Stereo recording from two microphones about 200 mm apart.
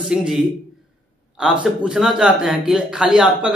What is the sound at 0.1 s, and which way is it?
A man's voice, centre (ahead or behind).